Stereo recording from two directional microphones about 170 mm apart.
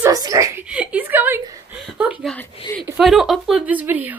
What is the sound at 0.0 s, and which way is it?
Chuckle, 20° right (ahead or behind).